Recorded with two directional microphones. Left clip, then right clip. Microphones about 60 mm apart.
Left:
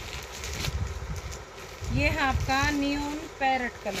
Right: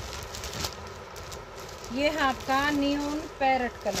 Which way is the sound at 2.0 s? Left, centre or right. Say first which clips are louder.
Right 1 dB; right.